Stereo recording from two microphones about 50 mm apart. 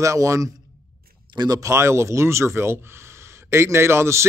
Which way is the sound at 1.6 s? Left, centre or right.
Right.